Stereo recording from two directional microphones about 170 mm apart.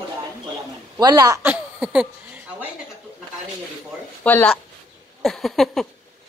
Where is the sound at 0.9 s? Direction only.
20° right (ahead or behind); by 2.4 s 5° right (ahead or behind).